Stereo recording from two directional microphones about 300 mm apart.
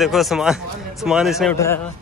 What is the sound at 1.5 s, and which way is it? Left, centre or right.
Speech, centre.